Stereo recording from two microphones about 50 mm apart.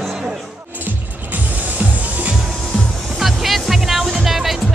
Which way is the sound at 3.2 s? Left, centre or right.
Centre.